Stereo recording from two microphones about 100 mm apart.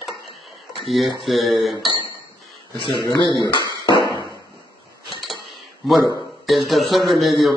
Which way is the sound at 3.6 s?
45° right (ahead or behind).